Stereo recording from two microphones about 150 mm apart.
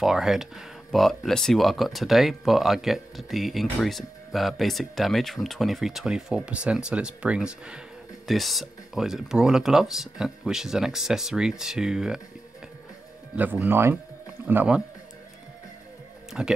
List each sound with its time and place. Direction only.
0.0 s speech: centre (ahead or behind)
13.4 s speech: 10° right (ahead or behind)
16.4 s speech: 5° right (ahead or behind)